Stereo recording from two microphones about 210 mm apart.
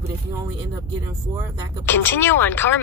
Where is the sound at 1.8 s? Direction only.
10° left (ahead or behind).